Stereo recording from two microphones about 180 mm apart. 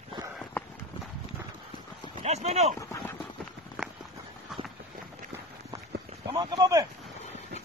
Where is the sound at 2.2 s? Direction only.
40° right (ahead or behind).